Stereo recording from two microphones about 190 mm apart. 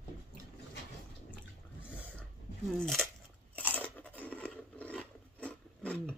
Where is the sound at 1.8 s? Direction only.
5° right (ahead or behind).